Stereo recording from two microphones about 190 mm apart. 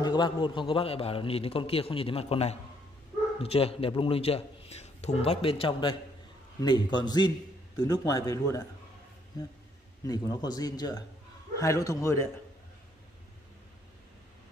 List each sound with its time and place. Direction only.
0.0 s a man's voice: 25° left (ahead or behind)
10.0 s a man's voice: 20° left (ahead or behind)